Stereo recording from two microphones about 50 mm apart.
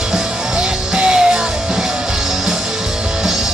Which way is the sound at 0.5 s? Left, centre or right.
Centre.